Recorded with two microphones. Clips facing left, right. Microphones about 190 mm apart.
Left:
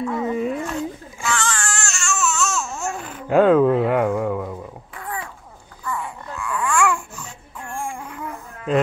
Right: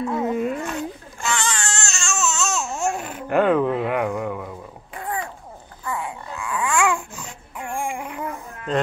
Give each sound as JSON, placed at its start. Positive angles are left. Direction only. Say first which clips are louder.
{"t": 0.0, "sound": "speech", "louder": "even", "side_deg": -5}
{"t": 1.2, "sound": "baby cry", "louder": "left 1 dB", "side_deg": -20}
{"t": 3.3, "sound": "speech", "louder": "left 4 dB", "side_deg": 15}
{"t": 4.9, "sound": "babbling", "louder": "right 4 dB", "side_deg": -25}